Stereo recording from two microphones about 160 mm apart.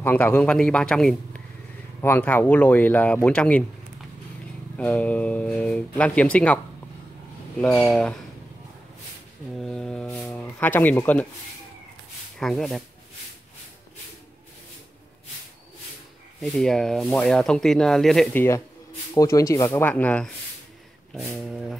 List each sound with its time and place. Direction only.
0.0 s speech: 10° left (ahead or behind)
4.7 s speech: 10° left (ahead or behind)
9.6 s mantra: 5° left (ahead or behind)
10.2 s speech: 10° left (ahead or behind)
12.4 s speech: 5° left (ahead or behind)
16.3 s speech: centre (ahead or behind)
19.1 s speech: 20° left (ahead or behind)
21.4 s speech: centre (ahead or behind)